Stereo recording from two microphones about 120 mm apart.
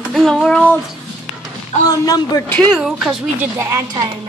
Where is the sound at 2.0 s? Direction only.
30° left (ahead or behind).